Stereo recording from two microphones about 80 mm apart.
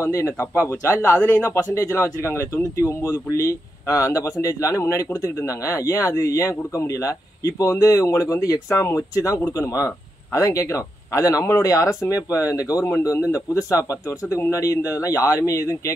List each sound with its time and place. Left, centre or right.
0.0 s speech: left